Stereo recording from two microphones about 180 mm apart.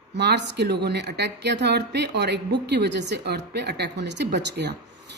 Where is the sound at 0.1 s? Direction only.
70° right (ahead or behind).